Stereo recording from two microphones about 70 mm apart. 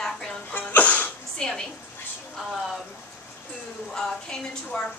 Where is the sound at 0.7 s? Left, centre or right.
Left.